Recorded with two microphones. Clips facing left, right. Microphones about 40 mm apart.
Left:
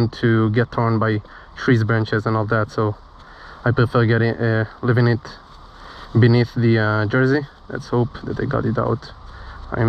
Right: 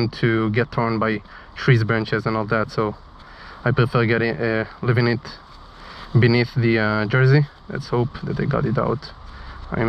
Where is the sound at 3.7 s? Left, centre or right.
Right.